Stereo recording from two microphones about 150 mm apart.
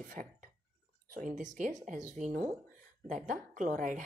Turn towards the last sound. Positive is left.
turn(degrees=-60)  # may be behind; listen again after turning